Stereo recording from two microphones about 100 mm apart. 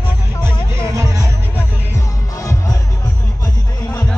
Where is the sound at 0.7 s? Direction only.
30° right (ahead or behind).